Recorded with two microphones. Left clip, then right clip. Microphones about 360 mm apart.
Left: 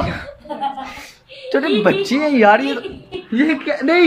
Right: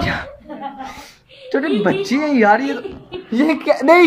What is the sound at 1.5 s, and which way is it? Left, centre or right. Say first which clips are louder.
A woman's voice: left 2 dB; centre.